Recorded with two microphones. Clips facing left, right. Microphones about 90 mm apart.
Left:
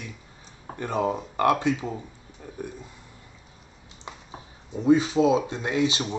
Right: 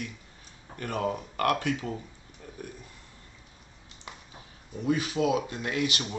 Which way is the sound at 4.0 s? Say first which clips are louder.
Left 5 dB; 25° left (ahead or behind).